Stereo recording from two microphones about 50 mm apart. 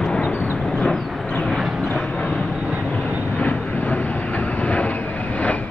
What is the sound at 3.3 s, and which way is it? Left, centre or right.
Train, left.